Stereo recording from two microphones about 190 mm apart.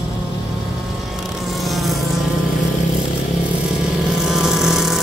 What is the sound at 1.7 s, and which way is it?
Insect, centre (ahead or behind).